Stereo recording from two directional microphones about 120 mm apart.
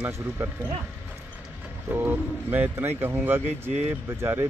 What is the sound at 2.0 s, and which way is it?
Speech, 15° right (ahead or behind).